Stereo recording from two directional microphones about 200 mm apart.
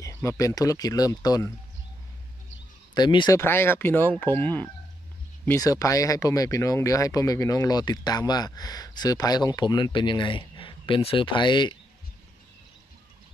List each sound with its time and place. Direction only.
0.0 s speech: 15° left (ahead or behind)
2.9 s speech: 20° left (ahead or behind)
3.3 s speech: 10° left (ahead or behind)